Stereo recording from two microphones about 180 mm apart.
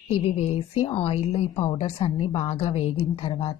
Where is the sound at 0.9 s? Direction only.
30° left (ahead or behind).